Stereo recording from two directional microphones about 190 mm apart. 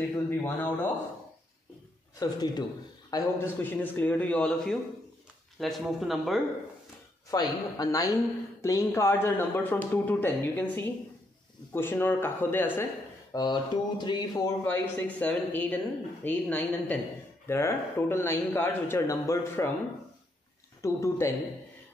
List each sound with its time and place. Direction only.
0.1 s a woman's voice: 10° left (ahead or behind)
2.1 s a woman's voice: 20° left (ahead or behind); by 6.4 s centre (ahead or behind)
7.2 s a woman's voice: 20° left (ahead or behind)
20.8 s a woman's voice: 15° left (ahead or behind)